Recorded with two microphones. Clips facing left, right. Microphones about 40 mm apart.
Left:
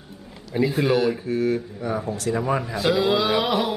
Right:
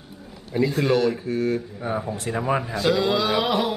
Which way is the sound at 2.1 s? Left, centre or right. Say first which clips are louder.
Left 3 dB; right.